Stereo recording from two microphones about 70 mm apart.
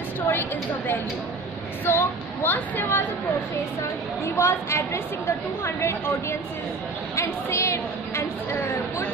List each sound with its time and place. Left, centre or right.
0.2 s a woman's voice: left
4.4 s a woman's voice: left
7.2 s a woman's voice: left